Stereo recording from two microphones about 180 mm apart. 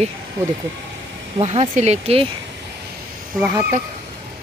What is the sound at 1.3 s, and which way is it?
Speech, 30° right (ahead or behind).